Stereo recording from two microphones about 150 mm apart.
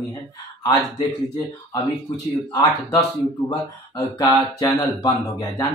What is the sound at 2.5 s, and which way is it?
Speech, 25° left (ahead or behind).